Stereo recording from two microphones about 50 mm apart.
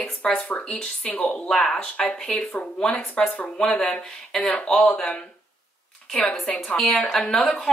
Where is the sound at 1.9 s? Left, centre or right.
Left.